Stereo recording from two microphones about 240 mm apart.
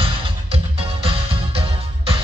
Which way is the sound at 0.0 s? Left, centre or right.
Right.